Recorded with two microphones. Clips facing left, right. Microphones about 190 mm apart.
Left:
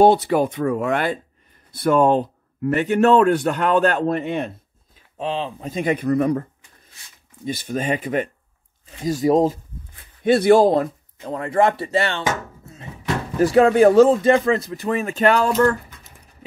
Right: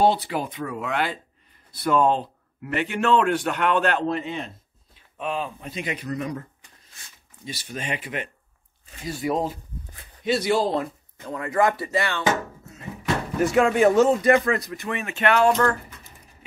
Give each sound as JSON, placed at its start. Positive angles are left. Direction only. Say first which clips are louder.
{"t": 0.0, "sound": "speech", "louder": "left 7 dB", "side_deg": 50}
{"t": 5.1, "sound": "speech", "louder": "left 3 dB", "side_deg": 30}
{"t": 5.7, "sound": "speech", "louder": "left 10 dB", "side_deg": 50}
{"t": 7.4, "sound": "speech", "louder": "left 9 dB", "side_deg": 50}
{"t": 10.2, "sound": "speech", "louder": "left 9 dB", "side_deg": 55}
{"t": 13.4, "sound": "speech", "louder": "left 5 dB", "side_deg": 35}